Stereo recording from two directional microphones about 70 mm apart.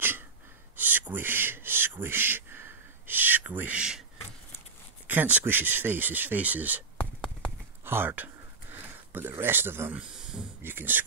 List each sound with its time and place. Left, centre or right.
0.7 s a sound: right
5.0 s speech: right
7.8 s speech: right
9.9 s speech: centre
10.6 s speech: right